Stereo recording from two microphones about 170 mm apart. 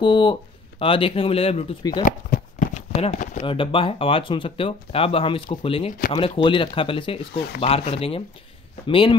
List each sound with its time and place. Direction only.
0.0 s speech: 30° left (ahead or behind)
1.8 s speech: 25° left (ahead or behind)
2.0 s a sound: 50° left (ahead or behind)
2.9 s a sound: 35° left (ahead or behind)
3.4 s speech: 30° left (ahead or behind)
5.9 s speech: 50° left (ahead or behind)
6.1 s speech: 30° left (ahead or behind)